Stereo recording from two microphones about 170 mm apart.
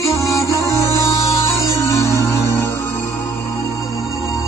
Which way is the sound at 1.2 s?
15° left (ahead or behind).